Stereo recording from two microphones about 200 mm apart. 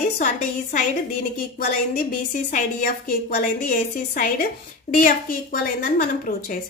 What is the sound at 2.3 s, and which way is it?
A woman's voice, 40° left (ahead or behind).